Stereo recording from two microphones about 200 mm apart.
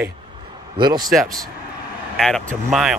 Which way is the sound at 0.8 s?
20° right (ahead or behind).